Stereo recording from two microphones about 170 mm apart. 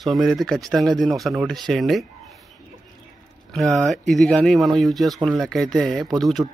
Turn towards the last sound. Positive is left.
turn(degrees=0)  # may be behind; listen again after turning